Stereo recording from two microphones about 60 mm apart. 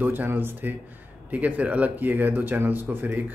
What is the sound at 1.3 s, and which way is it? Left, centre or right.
Speech, right.